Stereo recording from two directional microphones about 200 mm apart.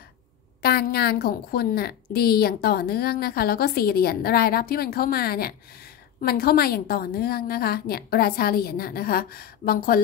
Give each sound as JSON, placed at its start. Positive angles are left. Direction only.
{"t": 0.6, "sound": "a woman's voice", "side_deg": 50}